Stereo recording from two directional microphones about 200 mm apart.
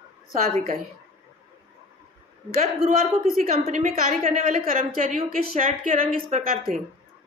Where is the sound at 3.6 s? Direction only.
35° right (ahead or behind).